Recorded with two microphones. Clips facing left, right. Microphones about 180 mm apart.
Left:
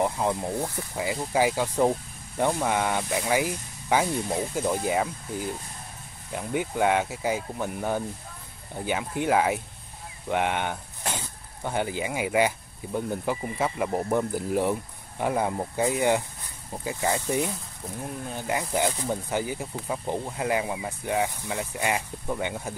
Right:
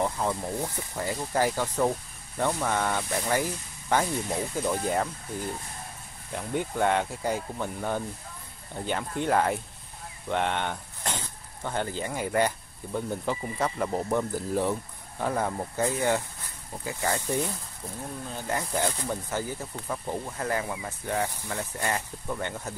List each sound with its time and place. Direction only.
0.0 s speech: 15° left (ahead or behind)